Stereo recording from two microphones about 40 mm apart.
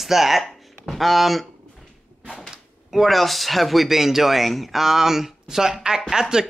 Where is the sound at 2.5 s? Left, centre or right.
Centre.